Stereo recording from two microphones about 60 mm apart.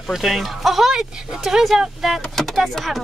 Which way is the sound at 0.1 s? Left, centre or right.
Centre.